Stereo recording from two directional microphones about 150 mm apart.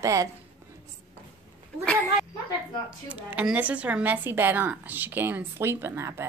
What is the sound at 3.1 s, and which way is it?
Speech, 10° right (ahead or behind).